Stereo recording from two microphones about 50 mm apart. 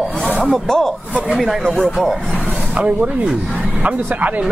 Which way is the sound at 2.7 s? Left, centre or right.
Right.